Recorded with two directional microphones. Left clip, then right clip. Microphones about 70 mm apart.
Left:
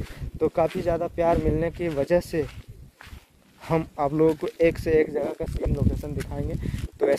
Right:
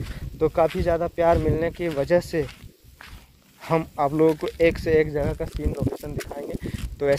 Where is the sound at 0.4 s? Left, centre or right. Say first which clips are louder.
Right 2 dB; left.